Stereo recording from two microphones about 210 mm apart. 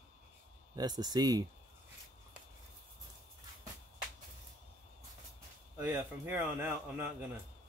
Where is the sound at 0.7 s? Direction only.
20° right (ahead or behind).